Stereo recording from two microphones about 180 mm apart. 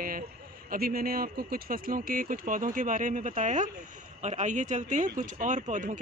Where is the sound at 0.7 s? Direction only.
55° right (ahead or behind).